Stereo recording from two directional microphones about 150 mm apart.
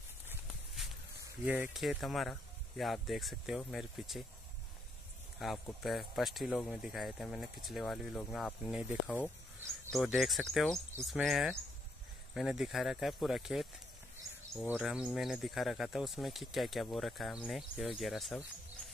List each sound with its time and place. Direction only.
1.4 s speech: 10° right (ahead or behind)
1.8 s speech: centre (ahead or behind)
5.4 s speech: centre (ahead or behind)